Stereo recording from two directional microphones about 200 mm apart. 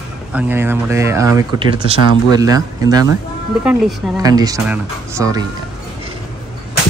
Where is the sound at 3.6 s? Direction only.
5° right (ahead or behind).